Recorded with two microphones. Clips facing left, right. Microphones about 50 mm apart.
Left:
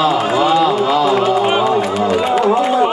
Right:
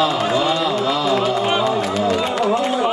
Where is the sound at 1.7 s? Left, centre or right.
Centre.